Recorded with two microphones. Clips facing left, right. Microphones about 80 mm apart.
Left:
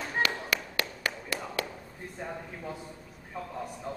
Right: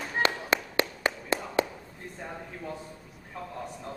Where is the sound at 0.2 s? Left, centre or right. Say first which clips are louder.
Right 4 dB; right.